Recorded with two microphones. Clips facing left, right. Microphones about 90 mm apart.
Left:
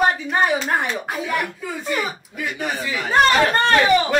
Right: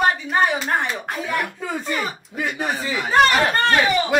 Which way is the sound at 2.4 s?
30° right (ahead or behind).